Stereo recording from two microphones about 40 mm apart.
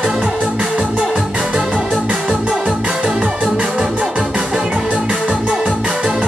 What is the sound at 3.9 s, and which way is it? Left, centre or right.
Organ, right.